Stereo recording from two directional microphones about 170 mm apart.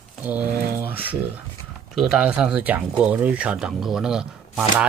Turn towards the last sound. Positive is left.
turn(degrees=-5)  # may be behind; listen again after turning